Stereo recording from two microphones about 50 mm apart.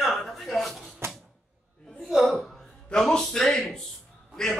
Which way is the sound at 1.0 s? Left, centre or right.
Right.